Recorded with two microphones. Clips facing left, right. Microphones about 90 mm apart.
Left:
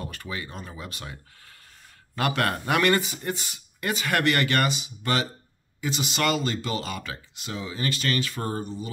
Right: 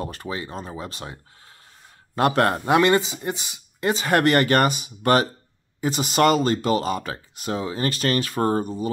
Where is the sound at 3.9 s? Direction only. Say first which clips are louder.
Right 5 dB; 35° right (ahead or behind).